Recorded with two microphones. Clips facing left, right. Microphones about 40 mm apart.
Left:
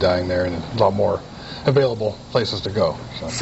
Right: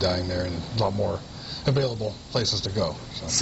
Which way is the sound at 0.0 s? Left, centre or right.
Left.